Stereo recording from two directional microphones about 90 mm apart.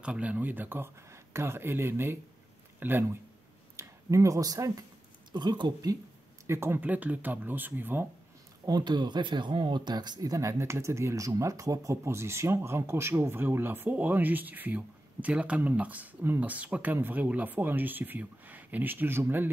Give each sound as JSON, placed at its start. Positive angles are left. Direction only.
{"t": 0.0, "sound": "speech", "side_deg": -15}
{"t": 3.7, "sound": "speech", "side_deg": -35}
{"t": 5.3, "sound": "speech", "side_deg": -55}
{"t": 6.4, "sound": "speech", "side_deg": -30}
{"t": 8.6, "sound": "speech", "side_deg": -50}